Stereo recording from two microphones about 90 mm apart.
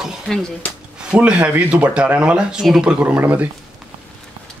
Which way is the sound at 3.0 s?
20° right (ahead or behind).